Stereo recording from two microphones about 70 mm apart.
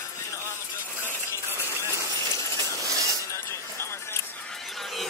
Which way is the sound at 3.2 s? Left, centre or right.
Left.